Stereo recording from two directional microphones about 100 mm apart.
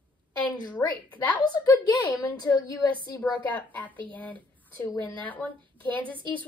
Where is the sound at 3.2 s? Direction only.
15° left (ahead or behind).